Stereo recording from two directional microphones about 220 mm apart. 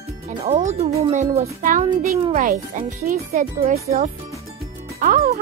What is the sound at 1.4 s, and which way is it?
Speech, 35° right (ahead or behind).